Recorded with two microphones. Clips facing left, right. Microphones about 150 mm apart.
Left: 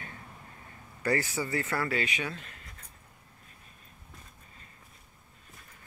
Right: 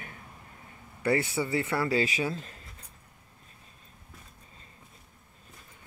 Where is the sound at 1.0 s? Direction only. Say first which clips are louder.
Right 3 dB; 25° right (ahead or behind).